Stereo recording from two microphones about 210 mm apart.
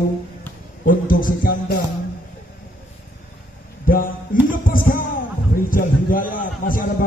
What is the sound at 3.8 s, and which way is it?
Music, 40° left (ahead or behind).